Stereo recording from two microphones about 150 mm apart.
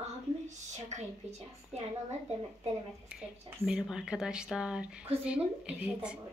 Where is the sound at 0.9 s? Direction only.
50° right (ahead or behind).